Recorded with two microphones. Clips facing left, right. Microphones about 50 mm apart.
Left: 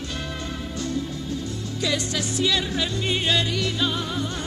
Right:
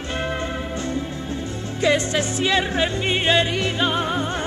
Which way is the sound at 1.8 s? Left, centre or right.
Right.